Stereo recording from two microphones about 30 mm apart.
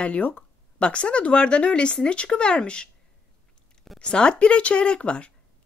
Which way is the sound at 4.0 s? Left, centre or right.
Left.